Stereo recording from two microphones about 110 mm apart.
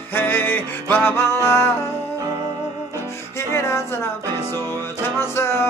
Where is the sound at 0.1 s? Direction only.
20° left (ahead or behind).